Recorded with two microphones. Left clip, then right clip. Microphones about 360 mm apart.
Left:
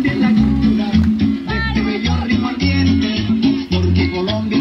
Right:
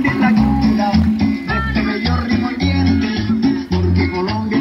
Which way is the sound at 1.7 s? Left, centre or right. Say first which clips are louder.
Right 1 dB; right.